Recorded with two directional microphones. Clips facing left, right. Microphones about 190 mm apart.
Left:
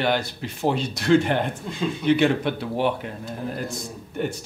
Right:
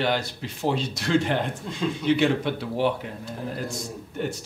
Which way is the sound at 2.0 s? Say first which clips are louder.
Left 2 dB; 60° left (ahead or behind).